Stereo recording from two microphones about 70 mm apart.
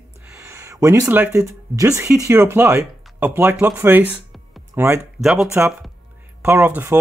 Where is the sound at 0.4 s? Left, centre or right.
Right.